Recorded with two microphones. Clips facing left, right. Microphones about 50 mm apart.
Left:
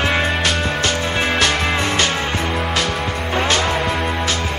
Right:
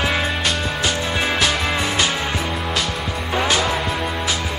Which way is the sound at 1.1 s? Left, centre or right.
Centre.